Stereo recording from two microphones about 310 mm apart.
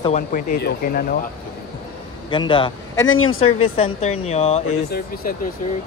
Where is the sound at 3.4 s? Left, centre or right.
Centre.